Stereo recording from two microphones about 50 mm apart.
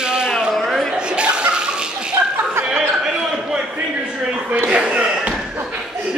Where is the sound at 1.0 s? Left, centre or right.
Centre.